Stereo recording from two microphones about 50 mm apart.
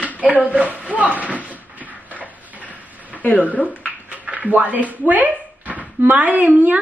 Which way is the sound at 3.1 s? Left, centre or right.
Left.